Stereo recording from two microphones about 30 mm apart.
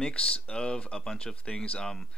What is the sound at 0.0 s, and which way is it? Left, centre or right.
Speech, left.